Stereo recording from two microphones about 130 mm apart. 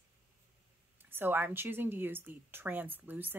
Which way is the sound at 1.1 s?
15° right (ahead or behind).